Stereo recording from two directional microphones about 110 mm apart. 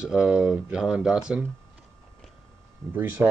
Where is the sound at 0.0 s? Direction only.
5° right (ahead or behind).